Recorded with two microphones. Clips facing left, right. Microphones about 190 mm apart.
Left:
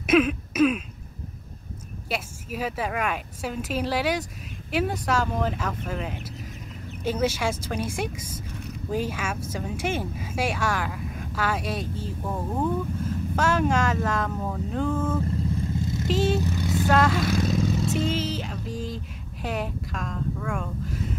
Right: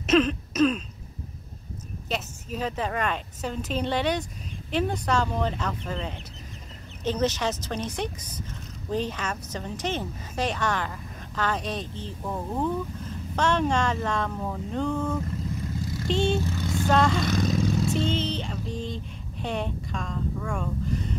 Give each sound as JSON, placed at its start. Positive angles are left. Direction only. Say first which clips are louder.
{"t": 0.0, "sound": "throat clearing", "louder": "left 1 dB", "side_deg": 10}
{"t": 2.0, "sound": "a woman's voice", "louder": "even", "side_deg": 10}
{"t": 15.8, "sound": "vehicle", "louder": "left 3 dB", "side_deg": 25}
{"t": 16.1, "sound": "speech", "louder": "left 1 dB", "side_deg": 5}
{"t": 16.4, "sound": "vehicle", "louder": "left 2 dB", "side_deg": 10}
{"t": 19.4, "sound": "a sound", "louder": "even", "side_deg": 5}